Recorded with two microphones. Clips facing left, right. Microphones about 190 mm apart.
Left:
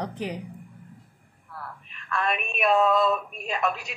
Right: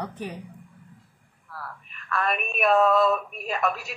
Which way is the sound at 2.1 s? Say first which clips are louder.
Right 1 dB; centre (ahead or behind).